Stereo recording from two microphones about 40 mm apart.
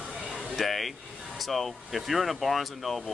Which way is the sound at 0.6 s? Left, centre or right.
Centre.